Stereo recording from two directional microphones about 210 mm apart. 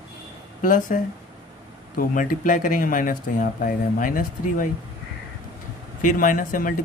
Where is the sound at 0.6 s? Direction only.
40° left (ahead or behind).